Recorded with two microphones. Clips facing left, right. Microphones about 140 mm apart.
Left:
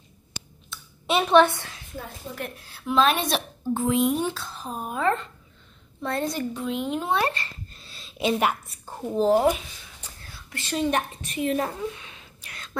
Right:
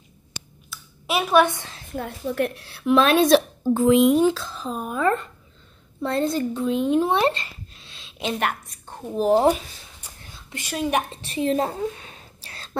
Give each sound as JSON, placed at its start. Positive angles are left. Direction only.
{"t": 0.3, "sound": "a sound", "side_deg": -5}
{"t": 2.0, "sound": "a woman's voice", "side_deg": -70}
{"t": 4.8, "sound": "speech", "side_deg": -45}
{"t": 6.0, "sound": "a woman's voice", "side_deg": -25}
{"t": 7.7, "sound": "a sound", "side_deg": 0}
{"t": 9.3, "sound": "speech", "side_deg": -30}
{"t": 10.0, "sound": "whispering", "side_deg": -15}
{"t": 10.7, "sound": "a woman's voice", "side_deg": -10}
{"t": 11.1, "sound": "a woman's voice", "side_deg": -30}
{"t": 11.8, "sound": "a sound", "side_deg": -40}